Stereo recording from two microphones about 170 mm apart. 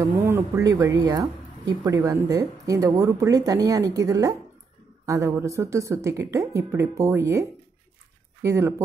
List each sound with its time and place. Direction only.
0.3 s speech: 15° right (ahead or behind)